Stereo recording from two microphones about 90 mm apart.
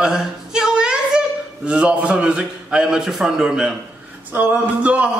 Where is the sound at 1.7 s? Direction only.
15° right (ahead or behind).